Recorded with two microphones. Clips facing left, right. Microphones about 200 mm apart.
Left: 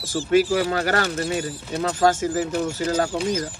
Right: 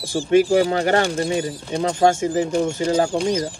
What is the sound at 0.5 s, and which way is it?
Speech, 25° right (ahead or behind).